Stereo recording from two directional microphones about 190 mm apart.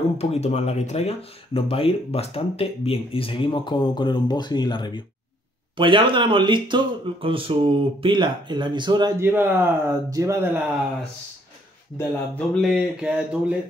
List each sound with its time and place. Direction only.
0.2 s speech: 35° left (ahead or behind)
5.8 s speech: 25° right (ahead or behind)
9.2 s speech: 10° right (ahead or behind)
12.0 s speech: 5° left (ahead or behind)